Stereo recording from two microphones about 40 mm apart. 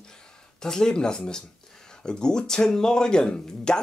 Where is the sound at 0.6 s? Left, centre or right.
Centre.